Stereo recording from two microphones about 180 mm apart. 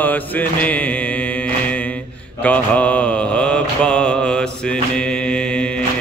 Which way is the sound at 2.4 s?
10° left (ahead or behind).